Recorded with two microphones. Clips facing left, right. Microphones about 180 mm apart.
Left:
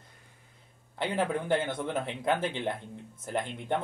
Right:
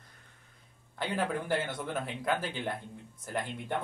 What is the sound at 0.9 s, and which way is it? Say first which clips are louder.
Speech: left 3 dB; 25° left (ahead or behind).